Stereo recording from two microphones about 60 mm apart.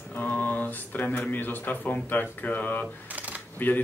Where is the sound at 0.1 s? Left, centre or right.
Left.